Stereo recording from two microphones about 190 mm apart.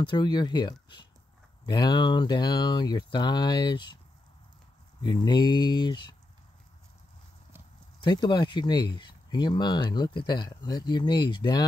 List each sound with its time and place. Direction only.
0.0 s speech: 25° left (ahead or behind)
5.0 s speech: 25° left (ahead or behind)
8.0 s speech: 20° left (ahead or behind)